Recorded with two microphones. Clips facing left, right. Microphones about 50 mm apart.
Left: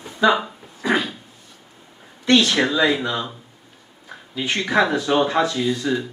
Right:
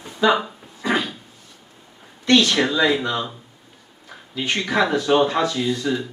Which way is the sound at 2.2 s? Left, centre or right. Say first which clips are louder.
Even; centre.